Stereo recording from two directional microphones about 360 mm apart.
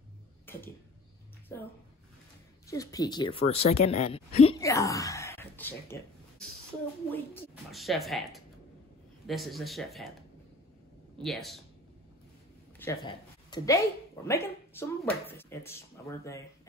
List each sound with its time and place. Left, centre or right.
0.5 s a sound: centre
2.6 s speech: centre
3.7 s speech: left
4.1 s speech: centre
7.1 s speech: centre
11.2 s speech: centre
12.7 s speech: centre